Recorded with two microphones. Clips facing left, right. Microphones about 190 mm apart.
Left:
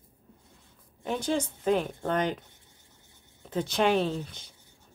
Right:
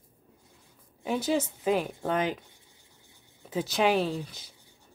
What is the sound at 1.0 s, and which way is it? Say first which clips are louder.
Speech: right 1 dB; 5° right (ahead or behind).